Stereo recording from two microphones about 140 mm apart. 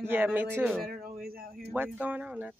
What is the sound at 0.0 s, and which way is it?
Speech, 15° right (ahead or behind).